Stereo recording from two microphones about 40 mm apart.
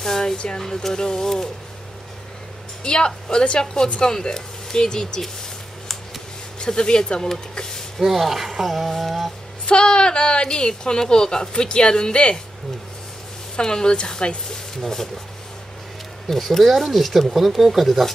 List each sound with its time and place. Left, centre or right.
0.0 s a sound: centre
0.6 s speech: centre
2.8 s speech: left
6.6 s speech: left
8.0 s speech: centre
9.7 s speech: left
13.6 s speech: centre
16.3 s speech: centre